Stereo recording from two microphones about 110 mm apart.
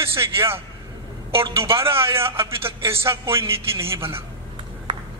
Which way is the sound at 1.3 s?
55° right (ahead or behind).